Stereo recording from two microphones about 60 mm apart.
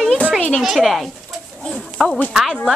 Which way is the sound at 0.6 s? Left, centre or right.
Centre.